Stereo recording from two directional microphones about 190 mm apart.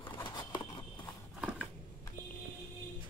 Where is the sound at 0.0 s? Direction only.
25° left (ahead or behind).